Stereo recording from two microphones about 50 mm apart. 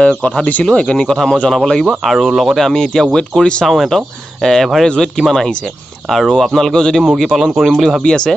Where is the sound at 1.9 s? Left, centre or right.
Centre.